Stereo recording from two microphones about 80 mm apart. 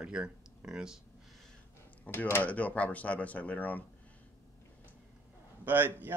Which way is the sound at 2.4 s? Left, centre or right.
Centre.